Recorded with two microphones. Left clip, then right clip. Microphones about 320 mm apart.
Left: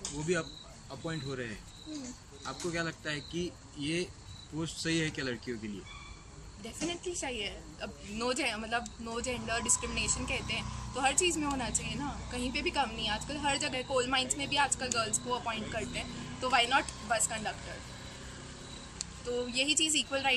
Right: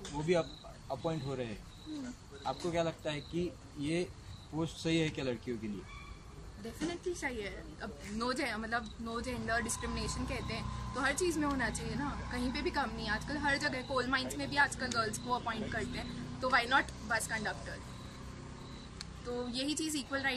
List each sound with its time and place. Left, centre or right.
1.0 s speech: centre
6.9 s speech: centre
19.5 s speech: centre